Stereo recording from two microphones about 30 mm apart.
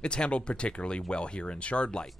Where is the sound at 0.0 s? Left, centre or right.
Left.